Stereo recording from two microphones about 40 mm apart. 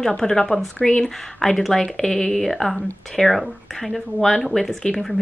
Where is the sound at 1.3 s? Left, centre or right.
Centre.